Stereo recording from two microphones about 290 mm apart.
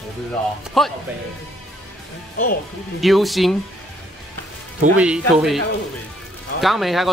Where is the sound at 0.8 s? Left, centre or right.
Centre.